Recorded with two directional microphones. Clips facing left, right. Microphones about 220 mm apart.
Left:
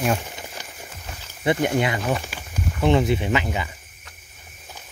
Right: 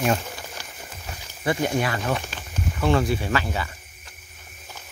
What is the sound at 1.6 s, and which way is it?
Speech, 20° left (ahead or behind).